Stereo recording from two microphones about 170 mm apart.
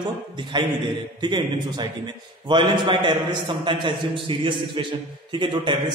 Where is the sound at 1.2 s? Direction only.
25° right (ahead or behind).